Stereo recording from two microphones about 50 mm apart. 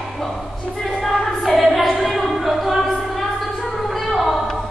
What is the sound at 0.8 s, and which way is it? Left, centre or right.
Music, centre.